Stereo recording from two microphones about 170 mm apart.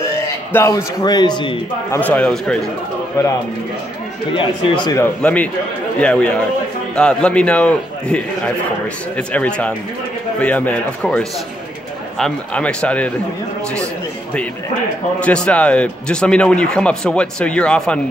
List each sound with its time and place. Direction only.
0.5 s a man's voice: 15° left (ahead or behind)
1.9 s a man's voice: 10° left (ahead or behind)
3.2 s a man's voice: 15° left (ahead or behind)
4.3 s a man's voice: 30° left (ahead or behind)
4.9 s a man's voice: 10° left (ahead or behind)
15.1 s a man's voice: 5° left (ahead or behind)